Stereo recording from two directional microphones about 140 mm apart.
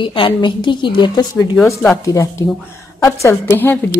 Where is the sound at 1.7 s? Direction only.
5° left (ahead or behind).